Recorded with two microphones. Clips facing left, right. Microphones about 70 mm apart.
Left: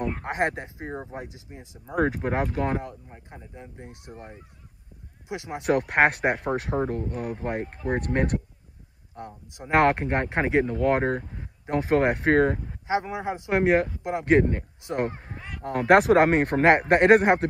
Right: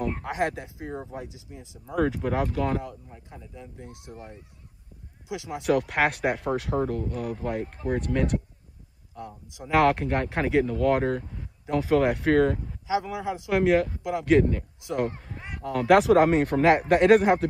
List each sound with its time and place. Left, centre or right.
0.2 s speech: left
5.3 s speech: left